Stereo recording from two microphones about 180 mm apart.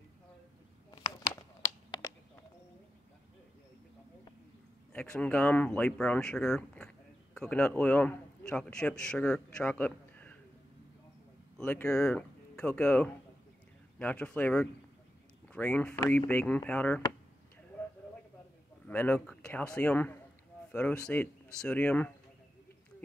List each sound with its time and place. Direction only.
4.9 s a man's voice: 5° left (ahead or behind)
11.5 s speech: 10° left (ahead or behind)
18.9 s speech: 10° left (ahead or behind)